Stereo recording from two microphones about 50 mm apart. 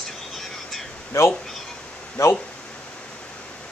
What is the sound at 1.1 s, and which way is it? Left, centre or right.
Speech, left.